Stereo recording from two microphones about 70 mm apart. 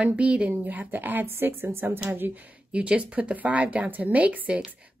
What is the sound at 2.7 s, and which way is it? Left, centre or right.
A woman's voice, centre.